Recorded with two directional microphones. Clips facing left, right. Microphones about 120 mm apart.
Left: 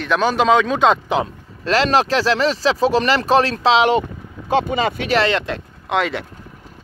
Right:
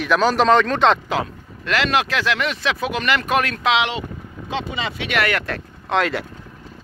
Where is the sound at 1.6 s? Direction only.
35° left (ahead or behind).